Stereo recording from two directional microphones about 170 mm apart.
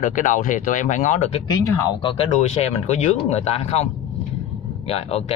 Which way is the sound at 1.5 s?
20° left (ahead or behind).